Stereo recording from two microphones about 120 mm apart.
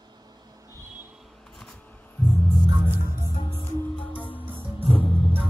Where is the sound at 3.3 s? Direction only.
50° left (ahead or behind).